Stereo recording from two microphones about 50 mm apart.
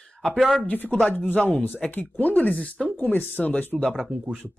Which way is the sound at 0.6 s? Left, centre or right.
Left.